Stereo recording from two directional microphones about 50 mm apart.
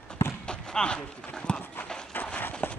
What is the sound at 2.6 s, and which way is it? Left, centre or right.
Run, left.